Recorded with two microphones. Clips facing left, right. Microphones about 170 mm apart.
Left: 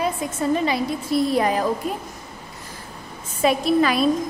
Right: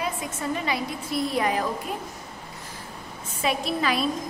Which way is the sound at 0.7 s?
35° left (ahead or behind).